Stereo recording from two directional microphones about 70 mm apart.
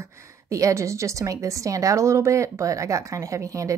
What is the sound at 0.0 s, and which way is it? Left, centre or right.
A woman's voice, right.